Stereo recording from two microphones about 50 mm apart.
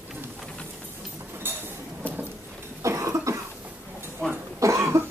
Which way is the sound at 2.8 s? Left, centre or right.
Right.